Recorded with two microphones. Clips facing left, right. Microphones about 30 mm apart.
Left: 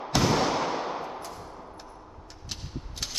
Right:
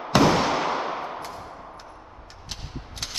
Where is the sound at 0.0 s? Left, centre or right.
Right.